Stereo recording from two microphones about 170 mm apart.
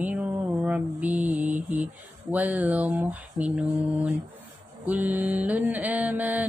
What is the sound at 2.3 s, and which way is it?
Mantra, 10° right (ahead or behind).